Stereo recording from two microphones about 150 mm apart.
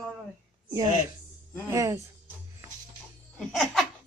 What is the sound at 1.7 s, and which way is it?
Speech, 20° right (ahead or behind).